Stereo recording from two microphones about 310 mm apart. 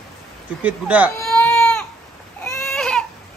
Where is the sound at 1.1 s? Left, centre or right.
Centre.